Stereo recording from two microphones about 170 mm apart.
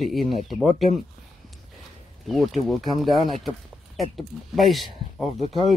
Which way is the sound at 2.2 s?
Centre (ahead or behind).